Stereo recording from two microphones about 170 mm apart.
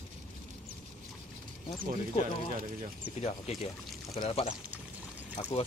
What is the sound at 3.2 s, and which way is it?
Speech, 35° left (ahead or behind).